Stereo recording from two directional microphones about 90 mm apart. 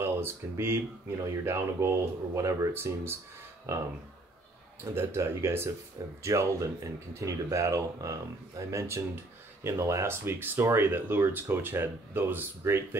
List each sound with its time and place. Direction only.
0.0 s speech: 25° right (ahead or behind)
4.9 s speech: 30° right (ahead or behind)